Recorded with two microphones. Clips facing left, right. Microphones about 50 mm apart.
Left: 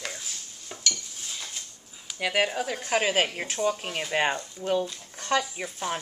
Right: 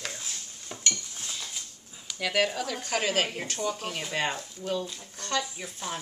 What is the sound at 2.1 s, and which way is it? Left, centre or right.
Speech, centre.